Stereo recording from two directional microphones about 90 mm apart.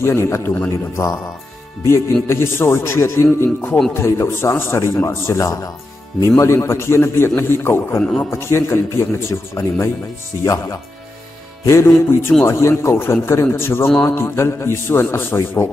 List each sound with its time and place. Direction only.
0.0 s a man's voice: 30° left (ahead or behind)
2.2 s a man's voice: 30° left (ahead or behind)
6.2 s a man's voice: 30° left (ahead or behind)